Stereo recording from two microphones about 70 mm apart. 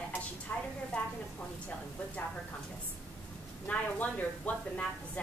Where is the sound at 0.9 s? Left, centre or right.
Centre.